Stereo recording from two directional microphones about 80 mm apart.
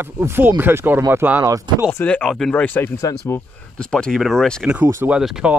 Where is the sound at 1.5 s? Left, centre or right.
Right.